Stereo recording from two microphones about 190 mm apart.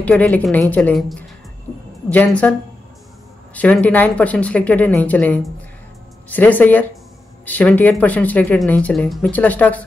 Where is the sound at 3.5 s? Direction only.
5° left (ahead or behind).